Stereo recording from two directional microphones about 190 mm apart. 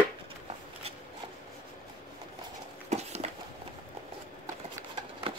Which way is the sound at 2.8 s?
35° right (ahead or behind).